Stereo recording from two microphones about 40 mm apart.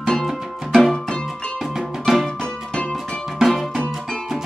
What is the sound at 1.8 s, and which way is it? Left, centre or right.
Music, centre.